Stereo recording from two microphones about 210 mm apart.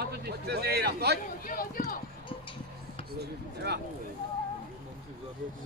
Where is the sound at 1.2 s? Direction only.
40° left (ahead or behind).